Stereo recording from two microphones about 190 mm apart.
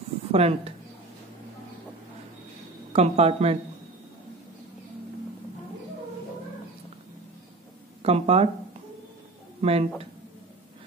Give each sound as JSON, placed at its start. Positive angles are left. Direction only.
{"t": 0.3, "sound": "speech", "side_deg": -30}
{"t": 2.9, "sound": "speech", "side_deg": -35}
{"t": 8.0, "sound": "speech", "side_deg": -30}
{"t": 9.6, "sound": "speech", "side_deg": -30}